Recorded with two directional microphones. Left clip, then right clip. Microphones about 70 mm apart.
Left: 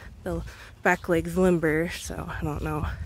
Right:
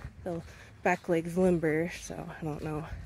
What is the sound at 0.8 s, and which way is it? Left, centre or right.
Speech, left.